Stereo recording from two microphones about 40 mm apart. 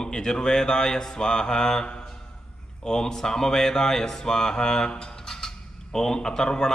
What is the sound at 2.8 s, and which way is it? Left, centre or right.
Speech, centre.